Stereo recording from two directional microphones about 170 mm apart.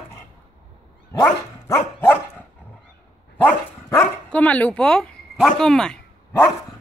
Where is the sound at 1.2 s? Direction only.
15° left (ahead or behind).